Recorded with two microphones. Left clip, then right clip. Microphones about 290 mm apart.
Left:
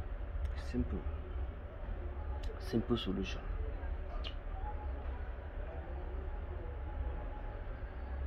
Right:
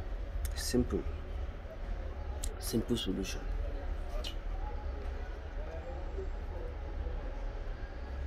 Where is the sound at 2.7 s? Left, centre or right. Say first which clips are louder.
Right 2 dB; centre.